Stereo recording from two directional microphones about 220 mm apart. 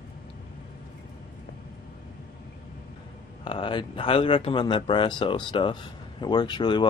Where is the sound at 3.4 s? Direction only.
20° left (ahead or behind).